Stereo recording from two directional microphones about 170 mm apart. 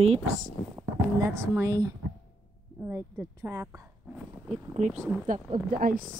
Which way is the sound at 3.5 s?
20° right (ahead or behind).